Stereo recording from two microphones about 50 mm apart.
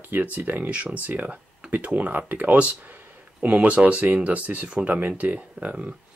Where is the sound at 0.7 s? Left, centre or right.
Right.